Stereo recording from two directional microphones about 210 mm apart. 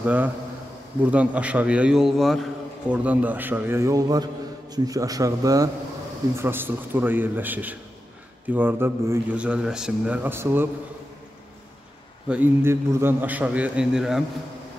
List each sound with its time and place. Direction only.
0.0 s a man's voice: 5° right (ahead or behind)
12.3 s a man's voice: 10° right (ahead or behind)